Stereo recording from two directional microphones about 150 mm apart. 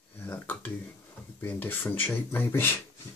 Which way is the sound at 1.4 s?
15° left (ahead or behind).